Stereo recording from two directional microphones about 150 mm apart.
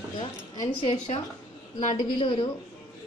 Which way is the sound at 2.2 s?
35° left (ahead or behind).